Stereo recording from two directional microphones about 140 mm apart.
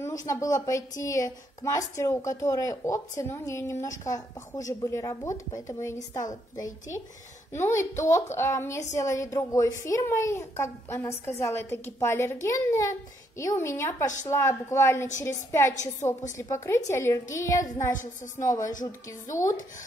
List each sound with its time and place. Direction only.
0.0 s a woman's voice: 25° left (ahead or behind)
17.9 s speech: 65° left (ahead or behind)
18.9 s a woman's voice: 20° left (ahead or behind)